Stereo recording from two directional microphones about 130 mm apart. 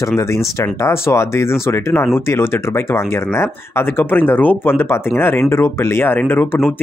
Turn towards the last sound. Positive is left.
turn(degrees=15)  # may be behind; listen again after turning